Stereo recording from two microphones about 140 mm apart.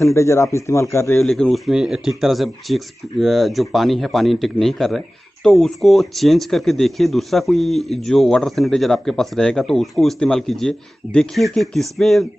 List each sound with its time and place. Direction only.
0.0 s a man's voice: 20° left (ahead or behind)
1.2 s speech: centre (ahead or behind)